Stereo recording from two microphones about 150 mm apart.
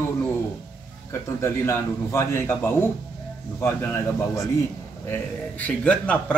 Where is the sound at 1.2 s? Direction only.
15° left (ahead or behind).